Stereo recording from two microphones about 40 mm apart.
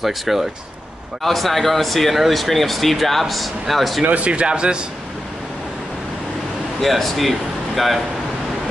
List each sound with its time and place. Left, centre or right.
0.0 s speech: centre
4.0 s a man's voice: right
6.8 s speech: centre